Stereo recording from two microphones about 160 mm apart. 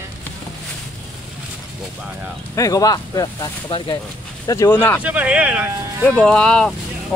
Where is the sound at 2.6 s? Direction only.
20° left (ahead or behind).